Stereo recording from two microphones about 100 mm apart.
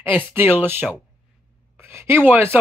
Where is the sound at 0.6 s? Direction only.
25° right (ahead or behind).